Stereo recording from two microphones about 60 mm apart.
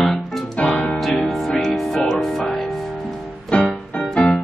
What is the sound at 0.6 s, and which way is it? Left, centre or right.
Music, centre.